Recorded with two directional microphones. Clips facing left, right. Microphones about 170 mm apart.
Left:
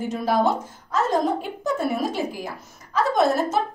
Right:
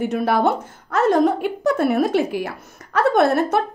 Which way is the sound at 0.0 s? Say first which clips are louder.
Right 3 dB; 65° right (ahead or behind).